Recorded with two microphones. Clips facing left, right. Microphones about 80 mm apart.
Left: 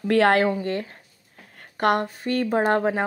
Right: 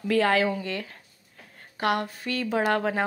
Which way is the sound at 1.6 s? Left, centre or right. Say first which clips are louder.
Left 5 dB; left.